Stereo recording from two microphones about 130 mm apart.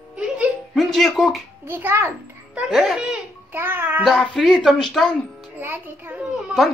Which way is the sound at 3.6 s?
15° right (ahead or behind).